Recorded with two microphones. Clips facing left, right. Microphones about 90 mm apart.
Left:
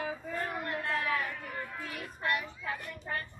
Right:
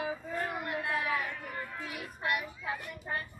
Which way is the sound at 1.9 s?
10° right (ahead or behind).